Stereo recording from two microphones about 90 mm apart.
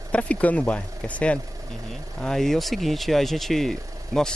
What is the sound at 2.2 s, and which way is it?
Speech, 5° left (ahead or behind).